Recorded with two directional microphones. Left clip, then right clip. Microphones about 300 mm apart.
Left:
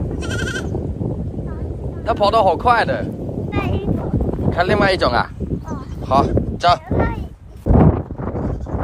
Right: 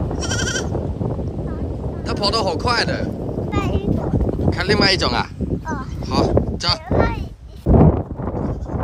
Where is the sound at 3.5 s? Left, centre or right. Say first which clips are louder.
Left 1 dB; centre.